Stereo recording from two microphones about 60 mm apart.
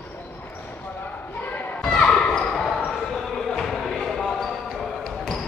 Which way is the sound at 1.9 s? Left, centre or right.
Centre.